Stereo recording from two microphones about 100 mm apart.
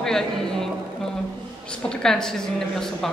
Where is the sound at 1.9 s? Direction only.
5° left (ahead or behind).